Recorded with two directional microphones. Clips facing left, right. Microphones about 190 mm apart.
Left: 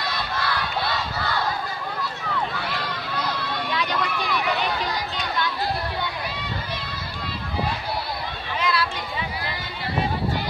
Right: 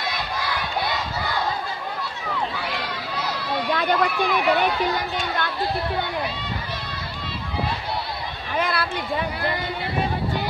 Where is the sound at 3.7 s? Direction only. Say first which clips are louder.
Right 6 dB; 55° right (ahead or behind).